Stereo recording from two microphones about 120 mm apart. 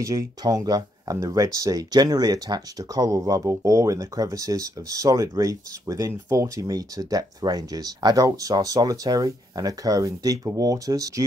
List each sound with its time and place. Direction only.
0.0 s speech: 25° right (ahead or behind)